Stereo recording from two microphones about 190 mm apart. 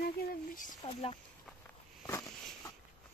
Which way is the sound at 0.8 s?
30° left (ahead or behind).